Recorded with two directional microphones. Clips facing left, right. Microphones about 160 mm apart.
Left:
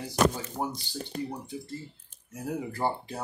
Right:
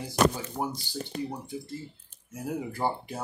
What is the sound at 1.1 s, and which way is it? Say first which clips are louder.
Speech: even; 90° right.